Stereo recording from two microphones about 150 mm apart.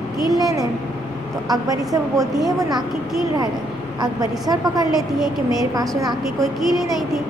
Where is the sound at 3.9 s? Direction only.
25° right (ahead or behind).